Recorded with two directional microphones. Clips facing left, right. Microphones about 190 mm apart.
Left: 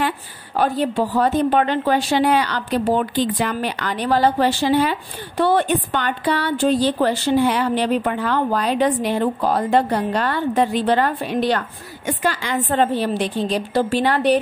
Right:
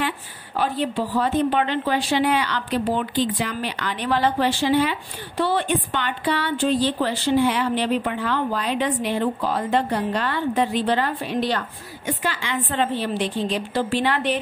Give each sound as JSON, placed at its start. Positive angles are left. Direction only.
{"t": 0.6, "sound": "a woman's voice", "side_deg": 45}